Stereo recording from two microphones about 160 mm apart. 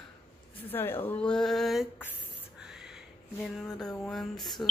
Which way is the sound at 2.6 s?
5° right (ahead or behind).